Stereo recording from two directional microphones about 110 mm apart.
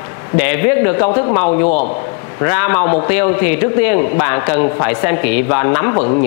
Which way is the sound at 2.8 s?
30° left (ahead or behind).